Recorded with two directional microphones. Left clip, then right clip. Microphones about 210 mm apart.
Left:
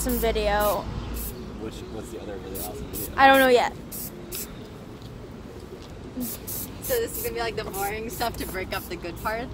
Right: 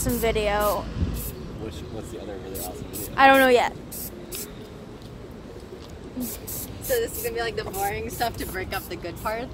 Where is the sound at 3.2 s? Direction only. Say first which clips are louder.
Right 1 dB; 15° right (ahead or behind).